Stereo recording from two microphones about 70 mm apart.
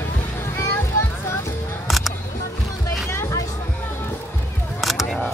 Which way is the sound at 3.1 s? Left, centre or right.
Left.